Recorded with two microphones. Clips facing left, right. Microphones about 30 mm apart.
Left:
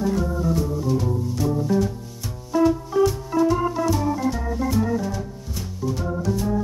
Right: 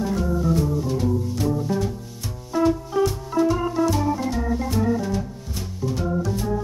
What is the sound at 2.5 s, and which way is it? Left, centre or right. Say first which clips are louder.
Music: left 2 dB; centre.